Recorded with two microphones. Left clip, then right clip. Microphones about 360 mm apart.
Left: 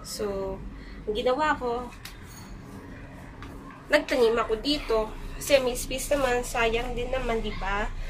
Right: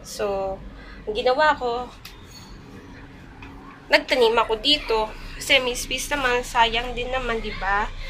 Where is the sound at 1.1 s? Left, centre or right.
Centre.